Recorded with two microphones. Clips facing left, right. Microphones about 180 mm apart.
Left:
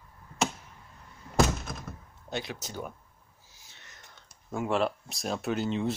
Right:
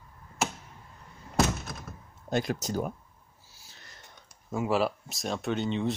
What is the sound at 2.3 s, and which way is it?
Speech, 45° right (ahead or behind).